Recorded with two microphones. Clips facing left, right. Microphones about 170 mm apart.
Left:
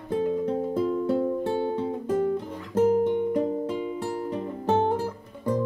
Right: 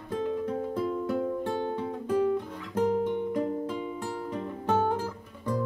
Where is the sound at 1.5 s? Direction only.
10° left (ahead or behind).